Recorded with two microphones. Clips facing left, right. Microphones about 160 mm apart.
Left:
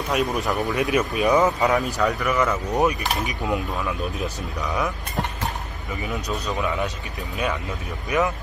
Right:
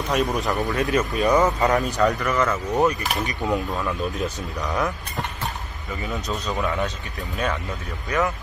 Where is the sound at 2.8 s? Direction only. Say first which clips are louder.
Right 1 dB; 20° left (ahead or behind).